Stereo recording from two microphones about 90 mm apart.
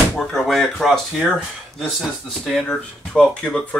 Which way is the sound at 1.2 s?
10° right (ahead or behind).